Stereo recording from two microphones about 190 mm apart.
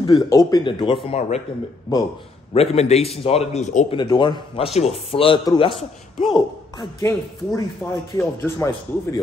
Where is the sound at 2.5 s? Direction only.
35° left (ahead or behind).